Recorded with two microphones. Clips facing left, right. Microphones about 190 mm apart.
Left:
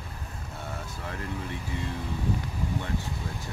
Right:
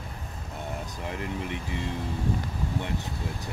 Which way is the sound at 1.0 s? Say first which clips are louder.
Right 3 dB; 20° right (ahead or behind).